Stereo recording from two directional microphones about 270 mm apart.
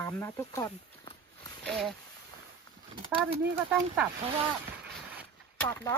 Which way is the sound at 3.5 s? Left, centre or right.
Centre.